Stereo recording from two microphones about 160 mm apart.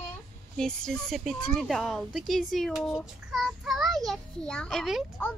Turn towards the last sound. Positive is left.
turn(degrees=0)  # may be behind; listen again after turning